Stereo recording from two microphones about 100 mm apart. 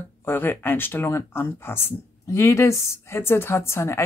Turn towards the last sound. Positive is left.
turn(degrees=25)  # may be behind; listen again after turning